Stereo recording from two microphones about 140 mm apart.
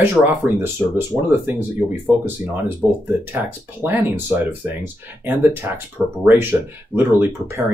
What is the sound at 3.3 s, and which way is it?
Speech, 15° right (ahead or behind).